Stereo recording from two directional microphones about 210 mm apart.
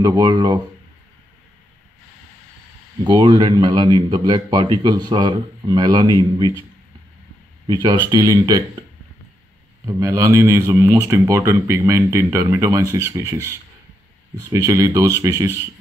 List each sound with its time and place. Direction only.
0.0 s speech: 20° right (ahead or behind)
3.0 s speech: 20° right (ahead or behind)
7.6 s speech: 20° right (ahead or behind)
9.8 s speech: 15° right (ahead or behind)
14.4 s speech: 15° right (ahead or behind)